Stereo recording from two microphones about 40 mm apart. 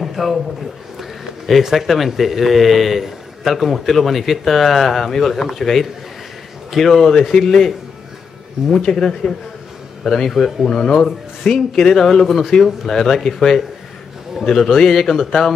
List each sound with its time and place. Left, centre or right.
0.0 s a sound: centre
0.9 s speech: centre
8.7 s speech: centre